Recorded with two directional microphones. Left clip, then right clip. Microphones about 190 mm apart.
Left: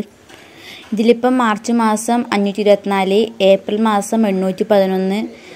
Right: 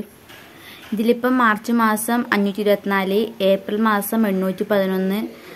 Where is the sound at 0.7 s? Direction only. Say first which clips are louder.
Left 6 dB; 20° left (ahead or behind).